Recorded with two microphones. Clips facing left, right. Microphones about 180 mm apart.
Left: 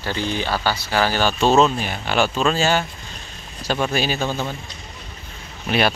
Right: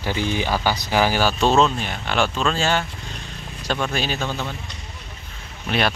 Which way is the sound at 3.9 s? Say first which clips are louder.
Left 3 dB; 5° left (ahead or behind).